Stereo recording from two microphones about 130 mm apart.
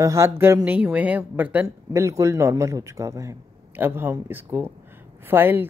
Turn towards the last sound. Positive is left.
turn(degrees=-15)  # may be behind; listen again after turning